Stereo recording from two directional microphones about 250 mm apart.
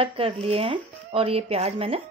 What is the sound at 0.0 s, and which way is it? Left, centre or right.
Speech, right.